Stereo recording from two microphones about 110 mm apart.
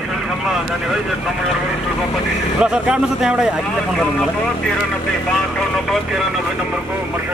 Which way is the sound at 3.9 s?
5° left (ahead or behind).